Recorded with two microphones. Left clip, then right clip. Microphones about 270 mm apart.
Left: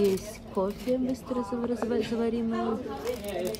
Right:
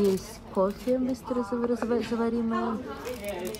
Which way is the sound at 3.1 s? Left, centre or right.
Centre.